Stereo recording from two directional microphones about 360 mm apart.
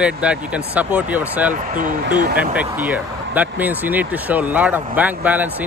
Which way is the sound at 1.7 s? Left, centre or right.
Right.